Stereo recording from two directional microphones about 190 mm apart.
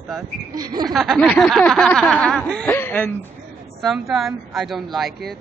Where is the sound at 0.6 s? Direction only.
20° right (ahead or behind).